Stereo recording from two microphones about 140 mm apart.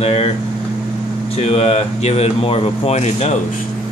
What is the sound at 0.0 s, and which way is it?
Speech, 45° left (ahead or behind).